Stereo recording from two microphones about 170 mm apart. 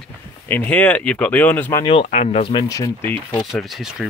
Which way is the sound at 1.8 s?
35° left (ahead or behind).